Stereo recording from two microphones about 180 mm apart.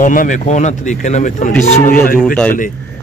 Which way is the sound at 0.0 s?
45° left (ahead or behind).